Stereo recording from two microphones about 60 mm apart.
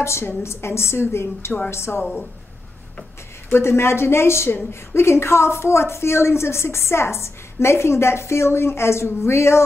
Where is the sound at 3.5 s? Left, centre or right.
Left.